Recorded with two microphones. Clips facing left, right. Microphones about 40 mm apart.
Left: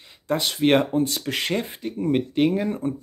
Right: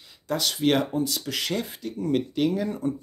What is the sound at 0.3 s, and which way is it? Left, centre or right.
Speech, left.